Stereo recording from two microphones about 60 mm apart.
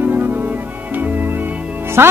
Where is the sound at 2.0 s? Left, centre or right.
Right.